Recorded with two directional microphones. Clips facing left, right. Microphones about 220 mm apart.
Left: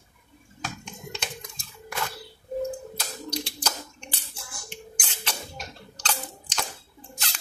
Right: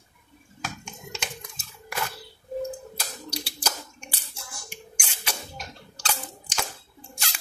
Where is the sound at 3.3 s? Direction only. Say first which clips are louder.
Left 1 dB; 10° right (ahead or behind).